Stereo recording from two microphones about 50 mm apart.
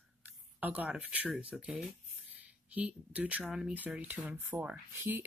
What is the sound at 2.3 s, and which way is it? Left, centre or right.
Speech, right.